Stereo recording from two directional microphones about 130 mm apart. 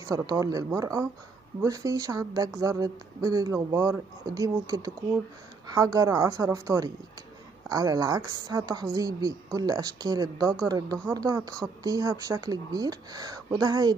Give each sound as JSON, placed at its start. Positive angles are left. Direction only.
{"t": 0.0, "sound": "speech", "side_deg": -25}